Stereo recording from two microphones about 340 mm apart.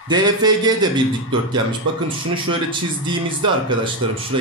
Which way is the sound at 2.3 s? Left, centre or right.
Centre.